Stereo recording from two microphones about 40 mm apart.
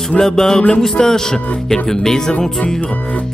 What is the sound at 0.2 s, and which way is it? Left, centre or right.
Music, centre.